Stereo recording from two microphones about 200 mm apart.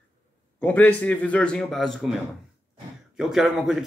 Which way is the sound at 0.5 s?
5° left (ahead or behind).